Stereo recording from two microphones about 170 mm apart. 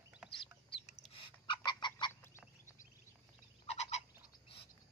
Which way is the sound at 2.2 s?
15° left (ahead or behind).